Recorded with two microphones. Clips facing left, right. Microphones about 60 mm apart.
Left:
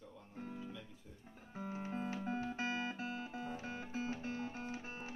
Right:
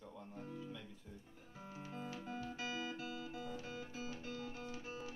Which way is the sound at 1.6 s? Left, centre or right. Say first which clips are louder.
Left 7 dB; left.